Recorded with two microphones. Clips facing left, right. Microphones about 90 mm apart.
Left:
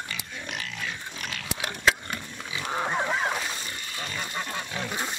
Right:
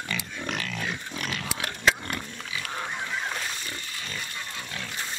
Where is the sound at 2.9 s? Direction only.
55° left (ahead or behind).